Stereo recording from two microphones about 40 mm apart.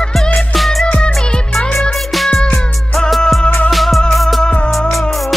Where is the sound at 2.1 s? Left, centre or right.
Centre.